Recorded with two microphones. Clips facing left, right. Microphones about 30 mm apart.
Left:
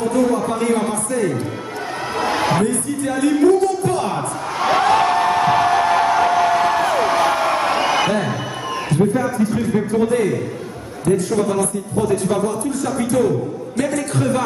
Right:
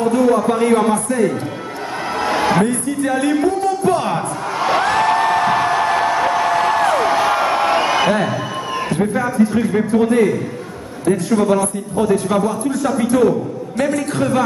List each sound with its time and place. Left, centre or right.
0.0 s a man's voice: centre
2.1 s a sound: centre
2.6 s music: centre
9.0 s speech: right
9.4 s a man's voice: centre